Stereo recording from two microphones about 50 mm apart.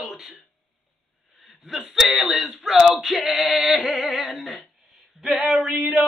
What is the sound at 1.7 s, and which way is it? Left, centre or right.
Speech, centre.